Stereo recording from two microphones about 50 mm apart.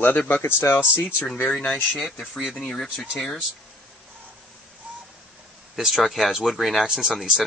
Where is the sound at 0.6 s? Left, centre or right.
Left.